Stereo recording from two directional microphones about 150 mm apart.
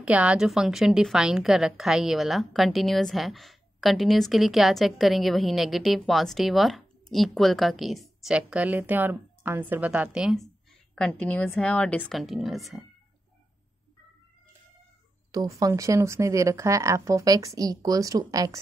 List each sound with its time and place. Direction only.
0.0 s a woman's voice: 10° right (ahead or behind)
15.3 s speech: 20° right (ahead or behind)